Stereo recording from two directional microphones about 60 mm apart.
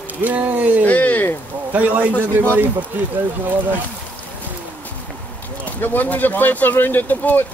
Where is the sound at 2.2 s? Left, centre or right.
Right.